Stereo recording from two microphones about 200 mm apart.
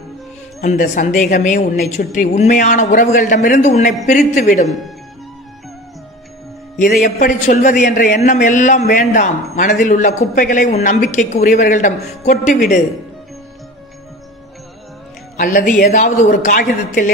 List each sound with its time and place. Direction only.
0.6 s a man's voice: 45° left (ahead or behind)
7.2 s a man's voice: 40° left (ahead or behind)
15.3 s a man's voice: 40° left (ahead or behind)